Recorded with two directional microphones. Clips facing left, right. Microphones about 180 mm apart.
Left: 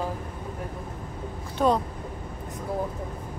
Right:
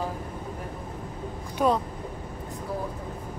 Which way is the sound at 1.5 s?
5° right (ahead or behind).